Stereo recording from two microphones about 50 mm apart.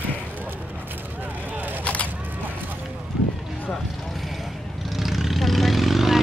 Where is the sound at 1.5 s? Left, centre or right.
Right.